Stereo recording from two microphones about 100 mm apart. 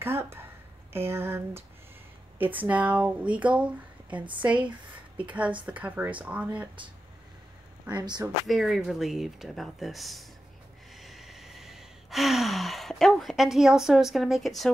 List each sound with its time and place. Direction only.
0.0 s a sound: 25° right (ahead or behind)
2.3 s speech: 15° right (ahead or behind)
7.9 s speech: 45° right (ahead or behind)
8.5 s speech: 5° right (ahead or behind)
11.0 s sigh: centre (ahead or behind)